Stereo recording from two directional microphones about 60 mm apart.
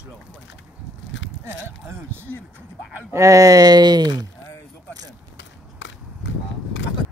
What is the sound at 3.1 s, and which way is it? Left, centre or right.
Speech, right.